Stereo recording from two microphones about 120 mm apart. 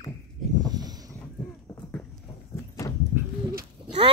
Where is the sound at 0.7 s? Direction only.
30° right (ahead or behind).